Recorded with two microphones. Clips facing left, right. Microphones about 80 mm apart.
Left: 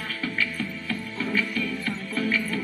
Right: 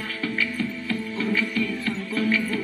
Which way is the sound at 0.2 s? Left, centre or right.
Centre.